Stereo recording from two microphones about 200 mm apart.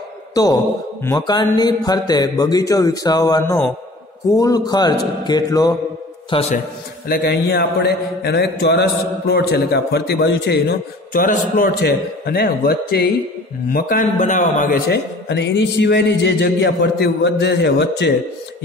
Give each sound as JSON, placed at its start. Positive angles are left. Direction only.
{"t": 0.3, "sound": "speech", "side_deg": 20}
{"t": 6.3, "sound": "a man's voice", "side_deg": 30}
{"t": 7.1, "sound": "a man's voice", "side_deg": 55}
{"t": 11.1, "sound": "a man's voice", "side_deg": 45}
{"t": 15.2, "sound": "a man's voice", "side_deg": 60}